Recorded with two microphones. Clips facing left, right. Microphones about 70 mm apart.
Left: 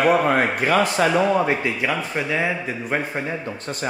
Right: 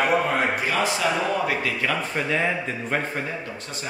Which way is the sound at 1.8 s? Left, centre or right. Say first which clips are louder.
Left 2 dB; centre.